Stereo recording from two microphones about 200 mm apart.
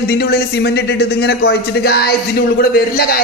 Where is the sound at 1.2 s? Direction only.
50° left (ahead or behind).